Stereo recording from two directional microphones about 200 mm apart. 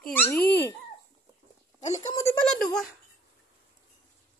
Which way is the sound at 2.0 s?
15° left (ahead or behind).